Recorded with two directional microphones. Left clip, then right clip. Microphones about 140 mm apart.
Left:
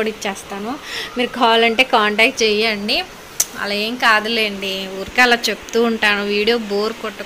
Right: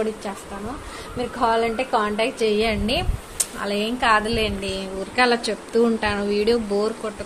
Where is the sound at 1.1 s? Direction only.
35° left (ahead or behind).